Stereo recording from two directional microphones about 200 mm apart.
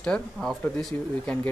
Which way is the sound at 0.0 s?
5° left (ahead or behind).